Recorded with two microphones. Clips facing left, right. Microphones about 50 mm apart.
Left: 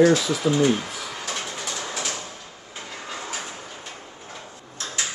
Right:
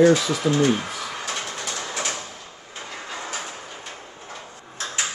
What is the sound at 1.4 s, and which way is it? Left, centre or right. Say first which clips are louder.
Train: right 1 dB; centre.